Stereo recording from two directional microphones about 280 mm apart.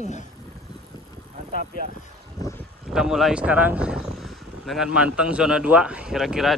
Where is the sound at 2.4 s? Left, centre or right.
Centre.